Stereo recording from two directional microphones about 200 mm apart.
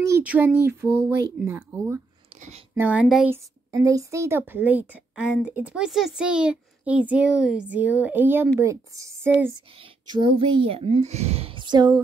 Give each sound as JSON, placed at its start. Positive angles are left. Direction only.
{"t": 0.0, "sound": "speech", "side_deg": -10}
{"t": 3.7, "sound": "speech", "side_deg": -15}
{"t": 10.0, "sound": "a woman's voice", "side_deg": -25}